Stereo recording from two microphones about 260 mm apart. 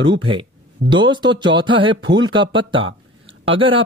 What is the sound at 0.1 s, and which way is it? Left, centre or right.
A man's voice, centre.